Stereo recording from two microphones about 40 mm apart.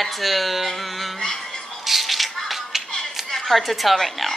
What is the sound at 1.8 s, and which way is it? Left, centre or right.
Music, centre.